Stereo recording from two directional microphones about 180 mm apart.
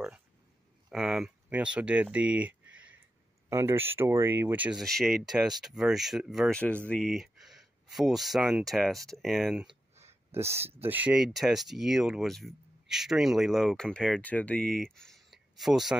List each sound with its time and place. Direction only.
0.8 s speech: 5° right (ahead or behind)
10.4 s speech: 35° right (ahead or behind)
10.8 s speech: 10° right (ahead or behind)